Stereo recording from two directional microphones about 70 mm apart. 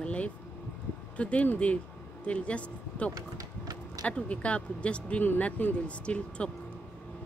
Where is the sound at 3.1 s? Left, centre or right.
Right.